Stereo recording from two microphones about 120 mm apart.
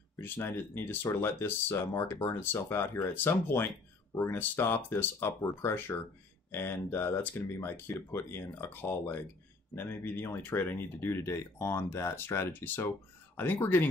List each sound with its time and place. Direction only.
0.1 s speech: 20° left (ahead or behind)